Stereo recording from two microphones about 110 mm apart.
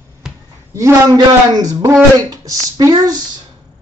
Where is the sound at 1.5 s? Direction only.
35° right (ahead or behind).